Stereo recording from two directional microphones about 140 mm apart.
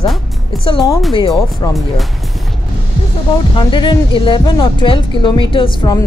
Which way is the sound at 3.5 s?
35° left (ahead or behind).